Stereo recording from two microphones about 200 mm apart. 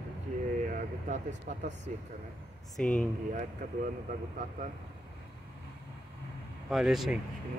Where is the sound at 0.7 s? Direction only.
35° right (ahead or behind).